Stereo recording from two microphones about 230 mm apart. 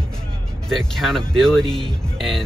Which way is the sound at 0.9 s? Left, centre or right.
Centre.